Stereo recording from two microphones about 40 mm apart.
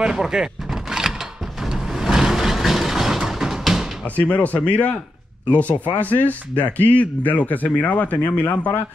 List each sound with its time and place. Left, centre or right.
0.0 s a sound: centre
1.6 s vehicle: centre
4.0 s speech: left